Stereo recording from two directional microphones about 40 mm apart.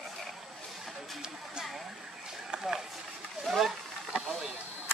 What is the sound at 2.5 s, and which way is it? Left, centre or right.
Run, centre.